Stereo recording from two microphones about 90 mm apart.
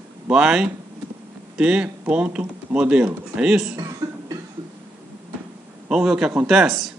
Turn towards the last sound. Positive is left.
turn(degrees=0)  # may be behind; listen again after turning